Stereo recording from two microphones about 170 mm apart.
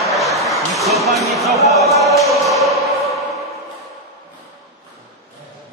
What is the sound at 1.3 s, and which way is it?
Speech, centre (ahead or behind).